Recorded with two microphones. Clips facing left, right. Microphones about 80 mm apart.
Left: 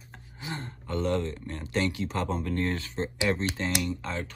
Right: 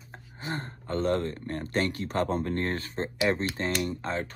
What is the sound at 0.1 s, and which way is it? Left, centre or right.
Speech, right.